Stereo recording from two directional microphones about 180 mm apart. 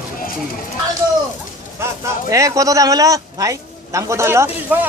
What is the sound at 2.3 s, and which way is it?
A man's voice, 20° right (ahead or behind).